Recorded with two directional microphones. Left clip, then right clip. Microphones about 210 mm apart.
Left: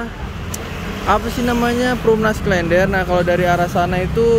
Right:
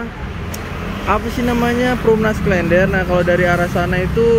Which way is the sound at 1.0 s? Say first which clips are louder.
Left 1 dB; 10° left (ahead or behind).